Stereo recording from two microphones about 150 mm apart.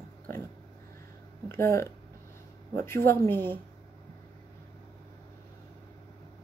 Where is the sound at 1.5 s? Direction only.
15° left (ahead or behind).